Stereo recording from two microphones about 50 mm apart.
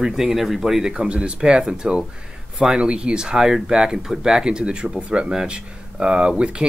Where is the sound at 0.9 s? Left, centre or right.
Centre.